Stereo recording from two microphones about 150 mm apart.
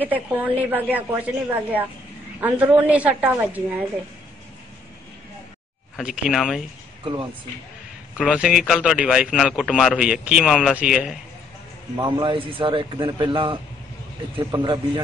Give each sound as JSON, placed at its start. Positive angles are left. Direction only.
{"t": 0.0, "sound": "a woman's voice", "side_deg": -10}
{"t": 5.9, "sound": "a man's voice", "side_deg": 0}
{"t": 8.2, "sound": "a man's voice", "side_deg": -5}
{"t": 12.0, "sound": "a man's voice", "side_deg": -30}